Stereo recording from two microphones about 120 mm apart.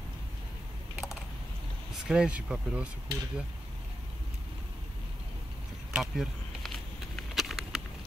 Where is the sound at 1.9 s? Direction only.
5° right (ahead or behind).